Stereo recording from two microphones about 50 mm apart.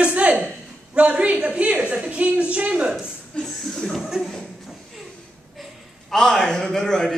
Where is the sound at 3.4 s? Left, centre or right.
Centre.